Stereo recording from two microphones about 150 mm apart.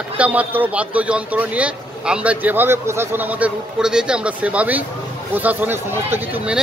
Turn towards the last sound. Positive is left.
turn(degrees=-15)  # may be behind; listen again after turning